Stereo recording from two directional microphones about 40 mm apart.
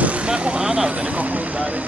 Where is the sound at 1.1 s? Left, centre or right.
Right.